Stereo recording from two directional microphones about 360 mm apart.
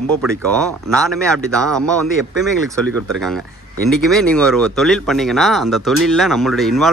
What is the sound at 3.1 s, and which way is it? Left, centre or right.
Speech, centre.